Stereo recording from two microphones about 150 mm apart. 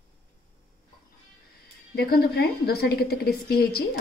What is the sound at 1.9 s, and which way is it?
A woman's voice, 90° left.